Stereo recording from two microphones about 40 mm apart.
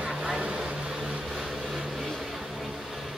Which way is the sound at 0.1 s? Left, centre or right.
Centre.